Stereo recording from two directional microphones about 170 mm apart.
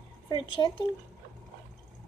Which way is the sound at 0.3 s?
25° left (ahead or behind).